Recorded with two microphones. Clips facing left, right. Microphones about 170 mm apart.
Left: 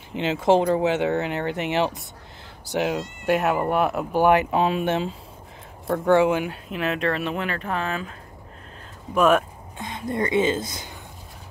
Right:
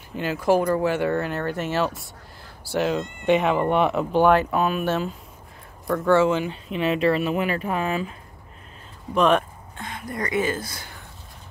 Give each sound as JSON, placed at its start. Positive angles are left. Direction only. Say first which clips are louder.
{"t": 0.1, "sound": "speech", "louder": "left 2 dB", "side_deg": 20}
{"t": 3.3, "sound": "speech", "louder": "right 2 dB", "side_deg": 5}
{"t": 6.7, "sound": "speech", "louder": "right 4 dB", "side_deg": 0}
{"t": 9.1, "sound": "speech", "louder": "left 1 dB", "side_deg": 5}
{"t": 9.8, "sound": "speech", "louder": "left 4 dB", "side_deg": 20}